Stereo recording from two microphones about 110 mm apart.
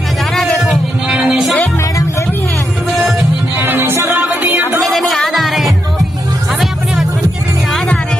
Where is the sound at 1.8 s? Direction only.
30° left (ahead or behind).